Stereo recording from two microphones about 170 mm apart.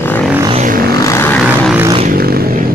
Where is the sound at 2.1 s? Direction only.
65° right (ahead or behind).